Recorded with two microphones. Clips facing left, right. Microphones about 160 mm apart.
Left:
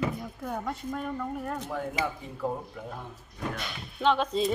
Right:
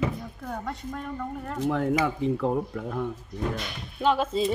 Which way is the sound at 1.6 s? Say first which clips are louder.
Right 12 dB; 90° right.